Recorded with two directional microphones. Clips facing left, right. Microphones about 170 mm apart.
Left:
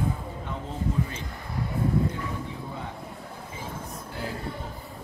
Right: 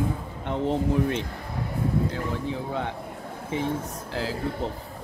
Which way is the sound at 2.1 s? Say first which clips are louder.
Right 4 dB; 90° right.